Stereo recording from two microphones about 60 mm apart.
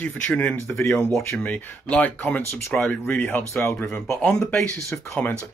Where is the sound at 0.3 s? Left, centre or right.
Left.